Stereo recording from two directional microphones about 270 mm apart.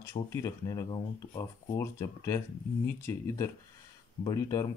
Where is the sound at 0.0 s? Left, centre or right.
Centre.